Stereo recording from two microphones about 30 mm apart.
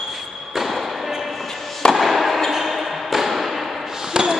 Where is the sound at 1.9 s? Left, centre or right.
Centre.